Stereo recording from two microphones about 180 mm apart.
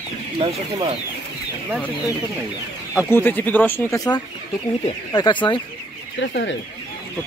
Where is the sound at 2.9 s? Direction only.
10° left (ahead or behind); by 5.6 s 25° left (ahead or behind).